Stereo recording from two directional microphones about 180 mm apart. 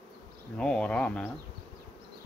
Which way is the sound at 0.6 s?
5° left (ahead or behind).